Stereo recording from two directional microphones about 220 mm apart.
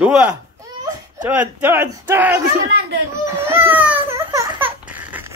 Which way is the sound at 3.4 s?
10° right (ahead or behind).